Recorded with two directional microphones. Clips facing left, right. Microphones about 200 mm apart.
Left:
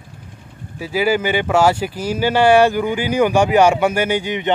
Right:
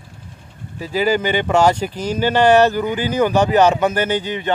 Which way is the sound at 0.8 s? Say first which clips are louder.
Even; 10° left (ahead or behind).